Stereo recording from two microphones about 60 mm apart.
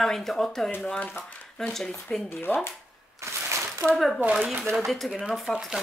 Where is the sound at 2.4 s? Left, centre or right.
Left.